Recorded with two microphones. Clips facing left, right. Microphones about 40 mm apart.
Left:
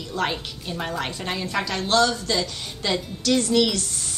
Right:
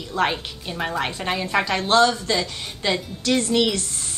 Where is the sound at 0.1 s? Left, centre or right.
Right.